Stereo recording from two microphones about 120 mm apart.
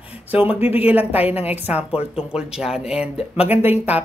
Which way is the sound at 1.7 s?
5° right (ahead or behind).